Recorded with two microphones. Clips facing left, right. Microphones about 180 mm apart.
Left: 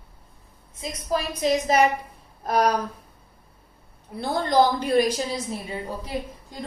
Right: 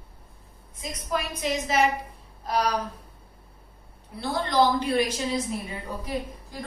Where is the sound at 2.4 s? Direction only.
50° left (ahead or behind).